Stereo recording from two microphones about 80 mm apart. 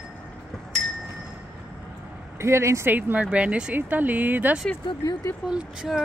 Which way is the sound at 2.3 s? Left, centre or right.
Right.